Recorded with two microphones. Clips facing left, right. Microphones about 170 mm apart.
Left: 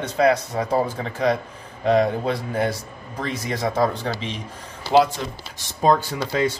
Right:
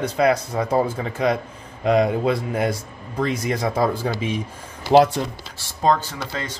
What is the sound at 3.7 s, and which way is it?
Speech, 5° right (ahead or behind).